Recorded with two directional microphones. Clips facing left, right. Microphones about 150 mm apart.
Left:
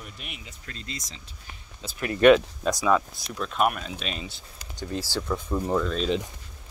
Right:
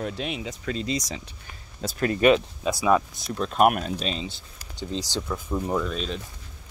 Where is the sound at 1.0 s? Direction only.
75° right (ahead or behind).